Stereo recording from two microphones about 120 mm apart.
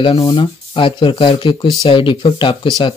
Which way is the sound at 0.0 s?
50° left (ahead or behind).